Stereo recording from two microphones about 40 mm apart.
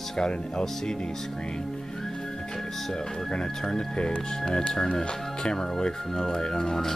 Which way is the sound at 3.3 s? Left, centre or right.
Centre.